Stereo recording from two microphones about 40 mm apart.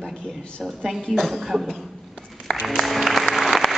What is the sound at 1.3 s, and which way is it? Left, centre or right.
Speech, centre.